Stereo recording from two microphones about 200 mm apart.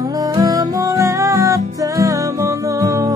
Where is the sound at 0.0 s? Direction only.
20° right (ahead or behind).